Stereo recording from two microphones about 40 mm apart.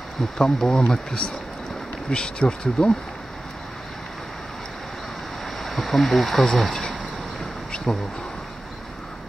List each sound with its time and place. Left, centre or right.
0.4 s speech: centre
5.6 s speech: centre
7.7 s a sound: left